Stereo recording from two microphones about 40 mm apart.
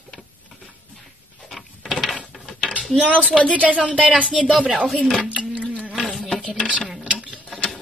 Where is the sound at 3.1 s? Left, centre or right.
Left.